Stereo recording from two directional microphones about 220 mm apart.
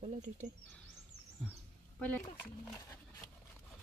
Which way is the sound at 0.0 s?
30° right (ahead or behind).